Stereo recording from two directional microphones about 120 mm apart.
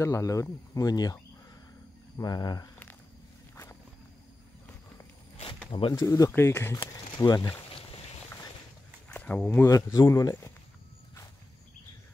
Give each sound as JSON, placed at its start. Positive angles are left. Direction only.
{"t": 0.0, "sound": "speech", "side_deg": 25}
{"t": 5.7, "sound": "speech", "side_deg": 45}
{"t": 5.9, "sound": "speech", "side_deg": 30}
{"t": 9.1, "sound": "speech", "side_deg": 10}
{"t": 9.9, "sound": "speech", "side_deg": 30}